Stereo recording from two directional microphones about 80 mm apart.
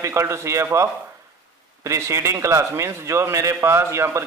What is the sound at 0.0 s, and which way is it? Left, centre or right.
A man's voice, right.